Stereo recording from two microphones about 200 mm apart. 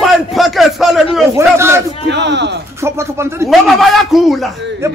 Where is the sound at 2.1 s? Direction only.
60° right (ahead or behind).